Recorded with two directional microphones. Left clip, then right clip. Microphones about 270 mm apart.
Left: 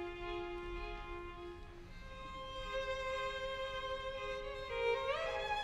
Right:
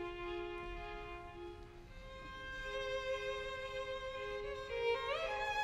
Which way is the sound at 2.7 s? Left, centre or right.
Centre.